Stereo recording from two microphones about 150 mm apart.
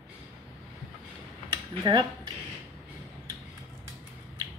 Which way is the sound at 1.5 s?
30° right (ahead or behind).